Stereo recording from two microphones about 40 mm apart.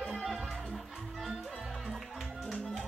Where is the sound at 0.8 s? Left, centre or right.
Centre.